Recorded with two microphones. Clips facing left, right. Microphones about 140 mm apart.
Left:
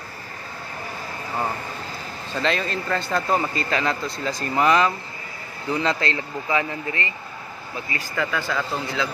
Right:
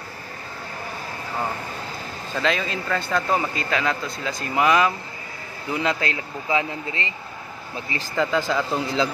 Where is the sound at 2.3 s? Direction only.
Centre (ahead or behind).